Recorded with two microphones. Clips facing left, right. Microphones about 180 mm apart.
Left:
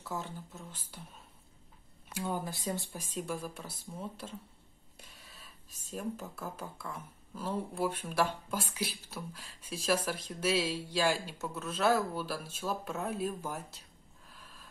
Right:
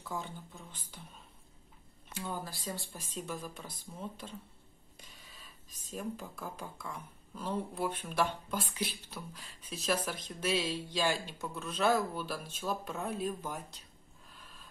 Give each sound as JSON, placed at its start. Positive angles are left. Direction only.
{"t": 0.0, "sound": "speech", "side_deg": 5}
{"t": 2.1, "sound": "speech", "side_deg": 15}